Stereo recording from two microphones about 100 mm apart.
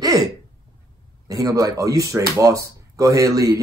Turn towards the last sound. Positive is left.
turn(degrees=-35)  # may be behind; listen again after turning